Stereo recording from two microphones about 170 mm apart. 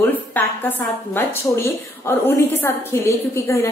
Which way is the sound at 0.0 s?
10° left (ahead or behind).